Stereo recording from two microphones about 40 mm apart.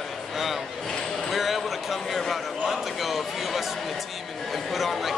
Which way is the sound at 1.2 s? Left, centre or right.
Centre.